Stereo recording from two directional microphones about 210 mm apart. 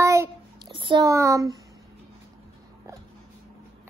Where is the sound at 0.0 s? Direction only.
15° right (ahead or behind).